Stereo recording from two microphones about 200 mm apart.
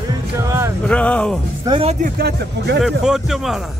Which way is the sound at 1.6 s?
25° right (ahead or behind).